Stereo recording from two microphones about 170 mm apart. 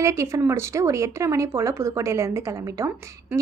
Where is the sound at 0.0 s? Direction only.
15° right (ahead or behind).